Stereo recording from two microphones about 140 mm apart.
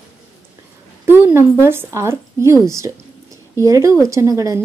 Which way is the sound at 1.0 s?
15° right (ahead or behind).